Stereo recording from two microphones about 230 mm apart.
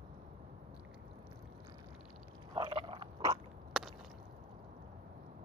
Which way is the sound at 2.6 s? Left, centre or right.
Right.